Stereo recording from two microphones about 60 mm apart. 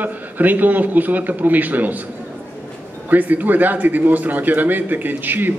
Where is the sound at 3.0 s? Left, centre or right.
Right.